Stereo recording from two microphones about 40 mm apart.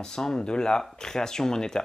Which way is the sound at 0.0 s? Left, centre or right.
Centre.